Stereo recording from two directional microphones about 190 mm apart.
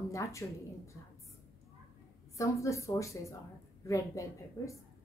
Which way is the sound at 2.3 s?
15° left (ahead or behind).